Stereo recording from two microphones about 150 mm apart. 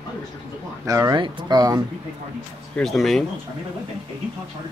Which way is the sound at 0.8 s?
25° right (ahead or behind).